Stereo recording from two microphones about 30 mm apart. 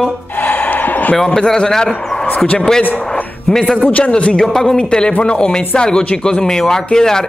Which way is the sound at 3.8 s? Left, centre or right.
Left.